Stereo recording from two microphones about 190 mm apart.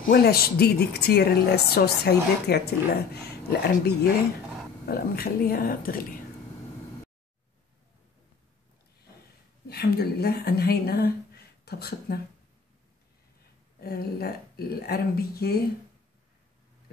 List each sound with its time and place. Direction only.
0.1 s a woman's voice: 55° left (ahead or behind)
9.7 s a woman's voice: 55° left (ahead or behind)
13.7 s a woman's voice: 55° left (ahead or behind)